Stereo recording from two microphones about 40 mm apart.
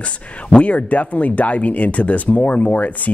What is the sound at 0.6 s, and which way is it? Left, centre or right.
Speech, left.